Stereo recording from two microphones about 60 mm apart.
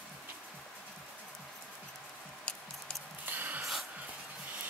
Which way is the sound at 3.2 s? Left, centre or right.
Right.